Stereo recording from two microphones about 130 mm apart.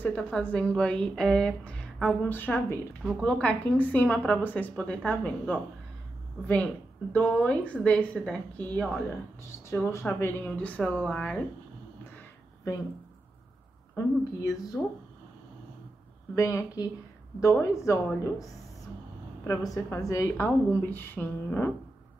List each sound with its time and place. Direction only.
0.0 s a woman's voice: 10° left (ahead or behind)
3.0 s a woman's voice: centre (ahead or behind)
9.1 s a woman's voice: 20° left (ahead or behind)
13.9 s a woman's voice: 25° left (ahead or behind)
16.3 s a woman's voice: 25° left (ahead or behind)
20.4 s a woman's voice: 15° left (ahead or behind)